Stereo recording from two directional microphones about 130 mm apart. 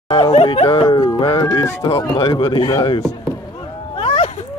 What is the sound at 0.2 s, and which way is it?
Speech, 55° left (ahead or behind).